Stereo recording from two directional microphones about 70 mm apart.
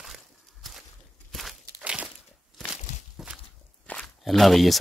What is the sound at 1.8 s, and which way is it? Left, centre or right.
Crumpling, centre.